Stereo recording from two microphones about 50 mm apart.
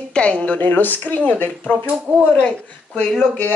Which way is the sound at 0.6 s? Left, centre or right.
Left.